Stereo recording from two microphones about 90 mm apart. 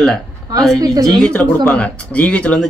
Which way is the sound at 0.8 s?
45° right (ahead or behind).